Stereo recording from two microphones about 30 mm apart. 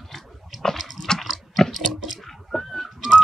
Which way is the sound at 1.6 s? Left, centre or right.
Centre.